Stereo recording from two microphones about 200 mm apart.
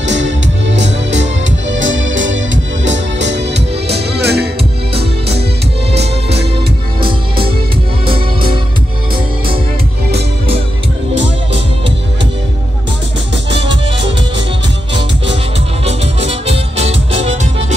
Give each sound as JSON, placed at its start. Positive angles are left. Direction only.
{"t": 0.7, "sound": "music", "side_deg": -65}
{"t": 3.3, "sound": "music", "side_deg": -60}
{"t": 8.1, "sound": "music", "side_deg": -25}
{"t": 15.8, "sound": "music", "side_deg": -30}